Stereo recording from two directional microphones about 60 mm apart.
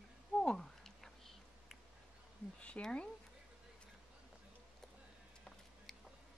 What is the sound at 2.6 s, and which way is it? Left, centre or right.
Speech, centre.